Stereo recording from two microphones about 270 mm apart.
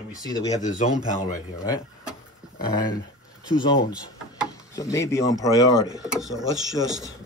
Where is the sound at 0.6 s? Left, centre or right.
Left.